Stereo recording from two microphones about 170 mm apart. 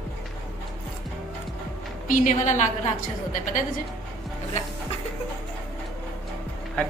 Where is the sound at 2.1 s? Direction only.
50° left (ahead or behind).